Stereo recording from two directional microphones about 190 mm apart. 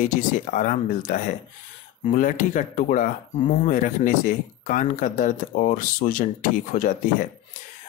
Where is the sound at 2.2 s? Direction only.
40° left (ahead or behind).